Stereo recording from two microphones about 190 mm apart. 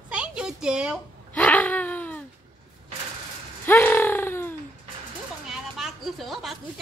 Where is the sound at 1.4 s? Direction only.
10° left (ahead or behind).